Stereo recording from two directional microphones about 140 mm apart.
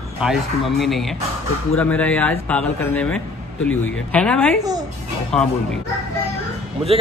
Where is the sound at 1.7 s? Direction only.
10° left (ahead or behind).